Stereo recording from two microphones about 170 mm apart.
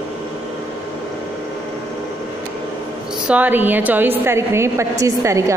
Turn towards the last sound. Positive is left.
turn(degrees=-15)  # may be behind; listen again after turning